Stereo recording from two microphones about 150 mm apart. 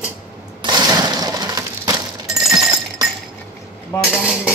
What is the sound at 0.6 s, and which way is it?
Crushing, 30° right (ahead or behind).